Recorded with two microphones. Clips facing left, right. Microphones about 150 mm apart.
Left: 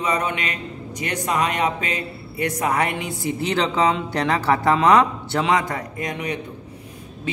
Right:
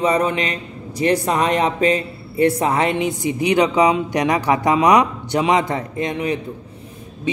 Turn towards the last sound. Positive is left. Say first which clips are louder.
# right 5 dB
turn(degrees=-30)  # may be behind; listen again after turning